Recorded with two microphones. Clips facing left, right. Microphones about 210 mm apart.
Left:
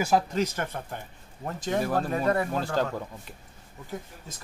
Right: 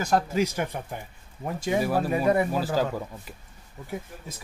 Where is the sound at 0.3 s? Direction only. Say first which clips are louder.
Right 2 dB; 10° right (ahead or behind).